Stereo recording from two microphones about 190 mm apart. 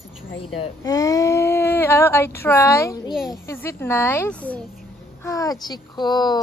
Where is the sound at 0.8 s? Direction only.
20° left (ahead or behind).